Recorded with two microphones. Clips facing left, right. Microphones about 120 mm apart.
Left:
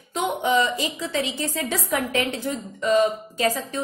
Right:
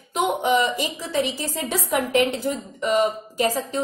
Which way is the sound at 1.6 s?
15° right (ahead or behind).